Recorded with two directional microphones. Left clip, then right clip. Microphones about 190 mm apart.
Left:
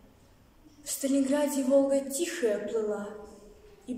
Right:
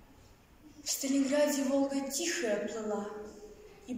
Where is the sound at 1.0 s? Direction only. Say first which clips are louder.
Left 2 dB; 20° left (ahead or behind).